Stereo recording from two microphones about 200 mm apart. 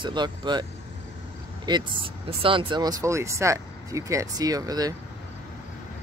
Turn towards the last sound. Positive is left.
turn(degrees=-20)  # may be behind; listen again after turning